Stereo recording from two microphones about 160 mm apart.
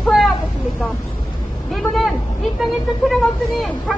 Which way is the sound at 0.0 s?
Centre (ahead or behind).